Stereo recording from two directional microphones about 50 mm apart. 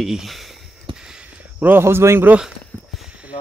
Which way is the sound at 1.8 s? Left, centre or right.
Right.